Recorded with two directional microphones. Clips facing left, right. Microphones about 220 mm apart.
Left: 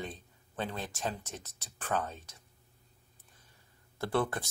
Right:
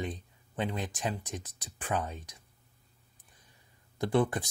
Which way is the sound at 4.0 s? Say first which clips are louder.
Right 4 dB; 15° right (ahead or behind).